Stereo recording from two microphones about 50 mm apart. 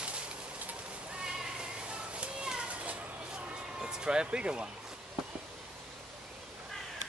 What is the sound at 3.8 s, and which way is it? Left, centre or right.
Speech, centre.